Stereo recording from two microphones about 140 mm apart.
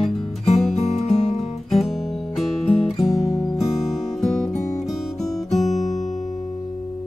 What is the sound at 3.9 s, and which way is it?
Music, centre (ahead or behind).